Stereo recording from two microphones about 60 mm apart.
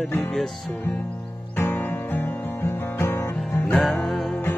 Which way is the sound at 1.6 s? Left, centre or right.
Left.